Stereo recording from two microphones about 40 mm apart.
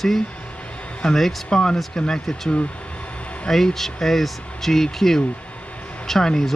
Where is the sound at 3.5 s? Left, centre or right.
Centre.